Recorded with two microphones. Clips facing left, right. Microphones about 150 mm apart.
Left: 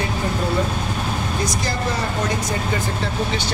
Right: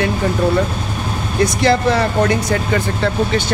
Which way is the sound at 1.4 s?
70° right (ahead or behind).